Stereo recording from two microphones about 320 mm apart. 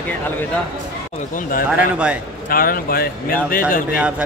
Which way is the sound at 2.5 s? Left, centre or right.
Left.